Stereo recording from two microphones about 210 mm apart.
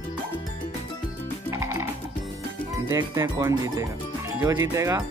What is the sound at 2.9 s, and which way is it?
Speech, 15° right (ahead or behind).